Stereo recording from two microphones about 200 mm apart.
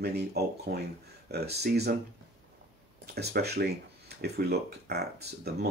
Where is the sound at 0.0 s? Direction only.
55° right (ahead or behind).